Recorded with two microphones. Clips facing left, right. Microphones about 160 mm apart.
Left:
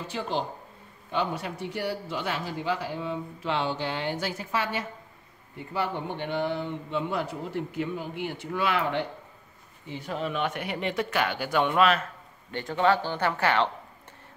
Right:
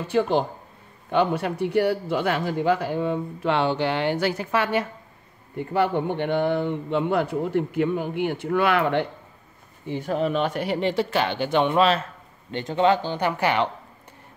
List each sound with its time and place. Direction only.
0.1 s speech: 55° right (ahead or behind)
9.8 s speech: 50° right (ahead or behind); by 13.7 s 15° right (ahead or behind)